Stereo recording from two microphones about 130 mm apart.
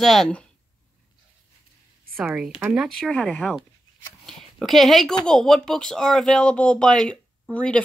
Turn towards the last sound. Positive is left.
turn(degrees=10)  # may be behind; listen again after turning